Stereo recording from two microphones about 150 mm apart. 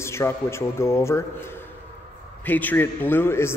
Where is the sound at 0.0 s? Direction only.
15° left (ahead or behind).